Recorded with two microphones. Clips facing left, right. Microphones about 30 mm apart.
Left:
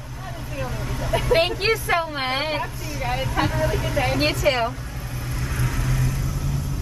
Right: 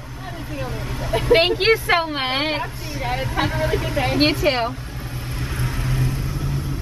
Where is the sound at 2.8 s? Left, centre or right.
Right.